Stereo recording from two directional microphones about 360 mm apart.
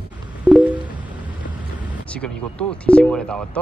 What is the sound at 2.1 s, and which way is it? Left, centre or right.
Speech, centre.